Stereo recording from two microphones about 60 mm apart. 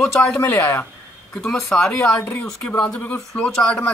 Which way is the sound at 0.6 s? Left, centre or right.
Left.